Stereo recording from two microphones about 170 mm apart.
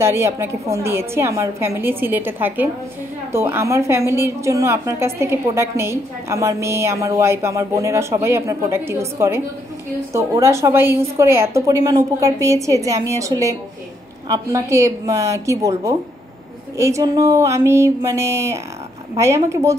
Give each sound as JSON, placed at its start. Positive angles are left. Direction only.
{"t": 0.0, "sound": "a woman's voice", "side_deg": -15}